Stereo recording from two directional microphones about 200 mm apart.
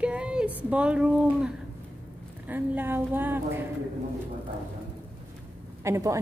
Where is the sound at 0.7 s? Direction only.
5° right (ahead or behind).